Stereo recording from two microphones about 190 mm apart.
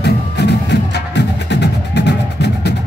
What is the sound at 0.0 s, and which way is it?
Music, 65° left (ahead or behind).